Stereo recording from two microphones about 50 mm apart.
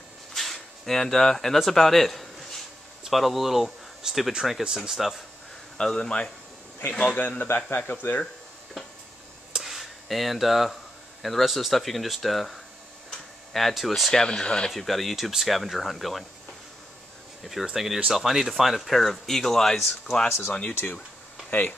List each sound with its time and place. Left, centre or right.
0.3 s a sound: centre
1.6 s speech: centre
5.8 s speech: centre
7.2 s speech: left
9.5 s a sound: centre
11.2 s speech: centre
14.7 s speech: centre
17.7 s speech: centre
21.5 s speech: left